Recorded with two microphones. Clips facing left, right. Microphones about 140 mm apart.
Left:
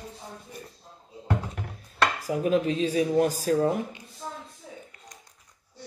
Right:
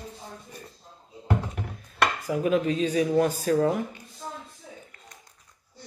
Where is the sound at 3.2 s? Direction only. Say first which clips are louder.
Right 1 dB; 40° left (ahead or behind).